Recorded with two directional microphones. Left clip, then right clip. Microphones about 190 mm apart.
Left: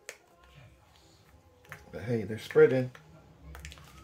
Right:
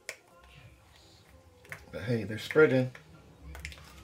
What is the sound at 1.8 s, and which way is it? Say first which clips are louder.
Speech: left 1 dB; 25° left (ahead or behind).